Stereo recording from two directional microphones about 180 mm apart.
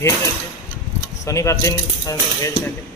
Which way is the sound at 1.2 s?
15° left (ahead or behind).